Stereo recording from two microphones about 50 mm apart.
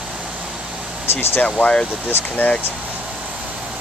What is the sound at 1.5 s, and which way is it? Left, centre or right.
Speech, left.